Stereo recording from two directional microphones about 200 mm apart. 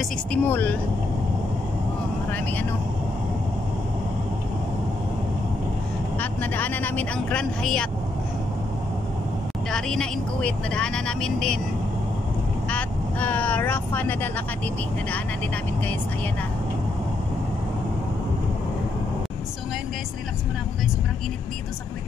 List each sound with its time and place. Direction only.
0.3 s speech: 10° left (ahead or behind)
6.1 s speech: 10° left (ahead or behind)
9.7 s speech: 5° left (ahead or behind)
12.6 s speech: 5° left (ahead or behind)